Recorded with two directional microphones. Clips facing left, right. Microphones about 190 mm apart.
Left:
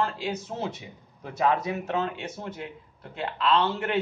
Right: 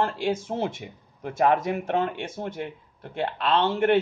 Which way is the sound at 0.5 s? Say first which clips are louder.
Right 5 dB; 40° right (ahead or behind).